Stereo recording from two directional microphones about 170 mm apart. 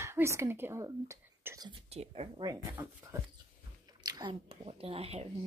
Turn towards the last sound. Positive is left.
turn(degrees=-35)  # may be behind; listen again after turning